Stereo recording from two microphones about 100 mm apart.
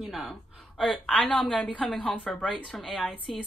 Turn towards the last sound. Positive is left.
turn(degrees=5)  # may be behind; listen again after turning